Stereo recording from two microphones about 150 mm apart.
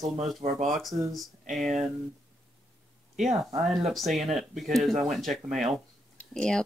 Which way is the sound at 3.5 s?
Centre (ahead or behind).